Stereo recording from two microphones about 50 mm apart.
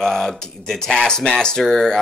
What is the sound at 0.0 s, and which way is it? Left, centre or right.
Speech, centre.